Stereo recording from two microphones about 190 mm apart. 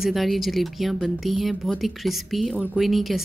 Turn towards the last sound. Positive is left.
turn(degrees=0)  # may be behind; listen again after turning